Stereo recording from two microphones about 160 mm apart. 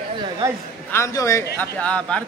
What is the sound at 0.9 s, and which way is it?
Speech, 20° left (ahead or behind).